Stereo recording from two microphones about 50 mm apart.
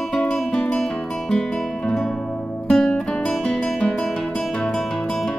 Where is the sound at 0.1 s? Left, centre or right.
Centre.